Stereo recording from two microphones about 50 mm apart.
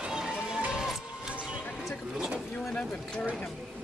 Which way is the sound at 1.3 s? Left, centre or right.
Right.